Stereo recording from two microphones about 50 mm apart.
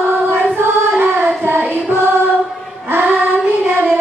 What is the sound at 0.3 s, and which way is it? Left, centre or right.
Singing, right.